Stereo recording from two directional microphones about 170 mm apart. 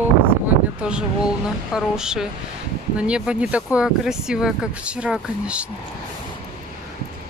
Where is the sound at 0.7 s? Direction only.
5° right (ahead or behind).